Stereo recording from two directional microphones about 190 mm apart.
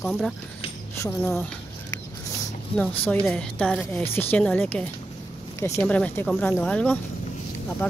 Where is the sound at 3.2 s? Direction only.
5° left (ahead or behind).